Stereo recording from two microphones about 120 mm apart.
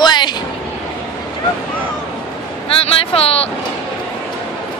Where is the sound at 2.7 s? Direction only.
50° left (ahead or behind).